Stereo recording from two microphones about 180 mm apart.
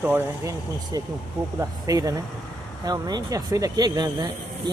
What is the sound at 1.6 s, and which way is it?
Speech, 20° right (ahead or behind).